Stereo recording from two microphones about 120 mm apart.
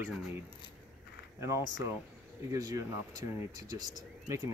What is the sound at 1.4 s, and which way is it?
Speech, 25° right (ahead or behind).